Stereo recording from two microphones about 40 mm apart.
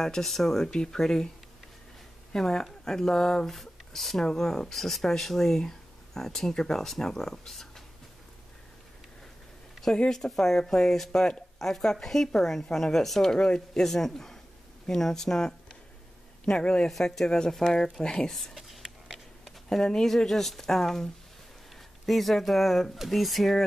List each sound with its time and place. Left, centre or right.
0.0 s speech: centre
2.3 s speech: centre
10.0 s a man's voice: centre
18.3 s a sound: centre
19.7 s speech: centre